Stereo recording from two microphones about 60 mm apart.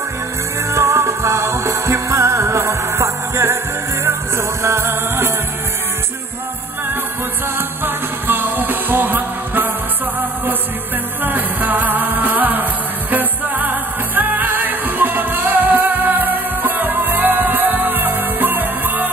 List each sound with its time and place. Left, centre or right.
0.7 s music: right
7.5 s music: right
11.2 s music: right